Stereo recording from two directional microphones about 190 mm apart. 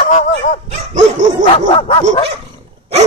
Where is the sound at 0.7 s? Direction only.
40° right (ahead or behind).